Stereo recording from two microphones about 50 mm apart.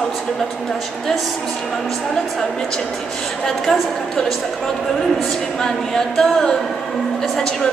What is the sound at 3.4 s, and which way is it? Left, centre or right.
Speech, centre.